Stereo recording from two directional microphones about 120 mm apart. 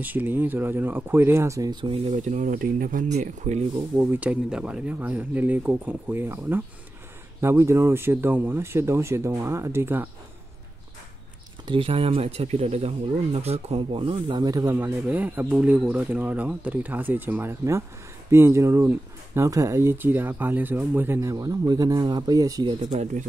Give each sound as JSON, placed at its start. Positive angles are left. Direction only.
{"t": 0.0, "sound": "speech", "side_deg": -15}
{"t": 2.1, "sound": "speech", "side_deg": -90}
{"t": 4.1, "sound": "speech", "side_deg": -10}
{"t": 11.6, "sound": "speech", "side_deg": -45}
{"t": 13.9, "sound": "speech", "side_deg": -45}
{"t": 14.4, "sound": "speech", "side_deg": -30}
{"t": 22.8, "sound": "speech", "side_deg": -70}